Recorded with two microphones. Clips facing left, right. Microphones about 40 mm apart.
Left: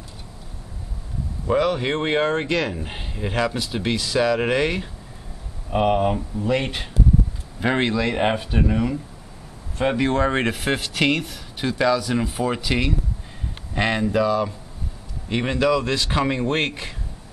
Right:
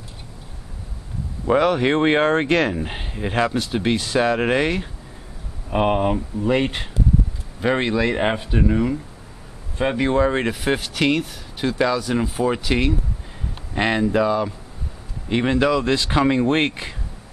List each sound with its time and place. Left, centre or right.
1.6 s speech: right
2.7 s speech: centre
3.4 s speech: right
4.4 s speech: centre
6.3 s speech: centre
7.6 s speech: centre
7.9 s speech: centre
8.5 s speech: centre
9.8 s speech: centre
10.2 s speech: centre
11.6 s speech: centre